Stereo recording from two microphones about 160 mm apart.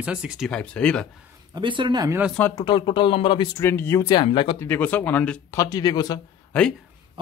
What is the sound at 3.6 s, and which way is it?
Speech, 15° left (ahead or behind).